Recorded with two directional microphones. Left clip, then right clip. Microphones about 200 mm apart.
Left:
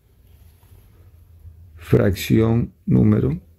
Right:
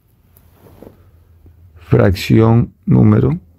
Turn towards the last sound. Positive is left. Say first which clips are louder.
# right 5 dB
turn(degrees=-20)  # may be behind; listen again after turning